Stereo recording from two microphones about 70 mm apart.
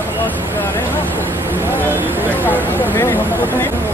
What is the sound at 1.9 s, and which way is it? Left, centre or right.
Speech, right.